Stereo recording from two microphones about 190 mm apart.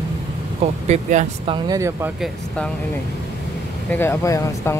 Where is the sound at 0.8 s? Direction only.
35° right (ahead or behind).